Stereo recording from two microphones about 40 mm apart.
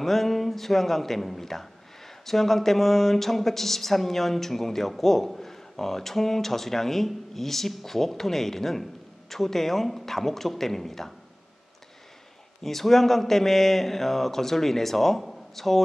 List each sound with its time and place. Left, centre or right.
0.0 s a man's voice: centre
12.6 s a man's voice: centre